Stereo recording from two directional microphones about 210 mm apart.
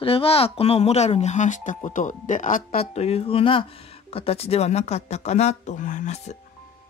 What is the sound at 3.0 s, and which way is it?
Speech, 25° left (ahead or behind).